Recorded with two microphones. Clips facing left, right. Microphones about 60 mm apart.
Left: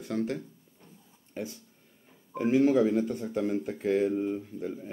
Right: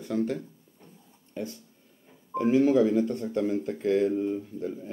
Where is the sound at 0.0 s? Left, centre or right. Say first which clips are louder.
Right 3 dB; centre.